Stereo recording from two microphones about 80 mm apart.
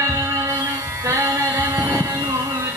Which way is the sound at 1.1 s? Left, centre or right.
Right.